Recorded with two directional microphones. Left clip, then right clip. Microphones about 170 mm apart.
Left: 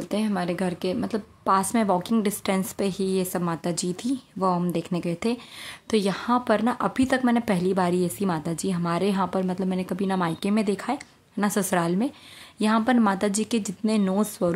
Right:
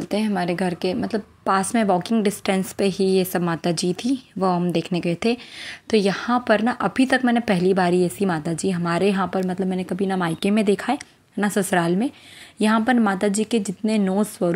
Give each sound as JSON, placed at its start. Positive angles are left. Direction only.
{"t": 0.0, "sound": "a woman's voice", "side_deg": -10}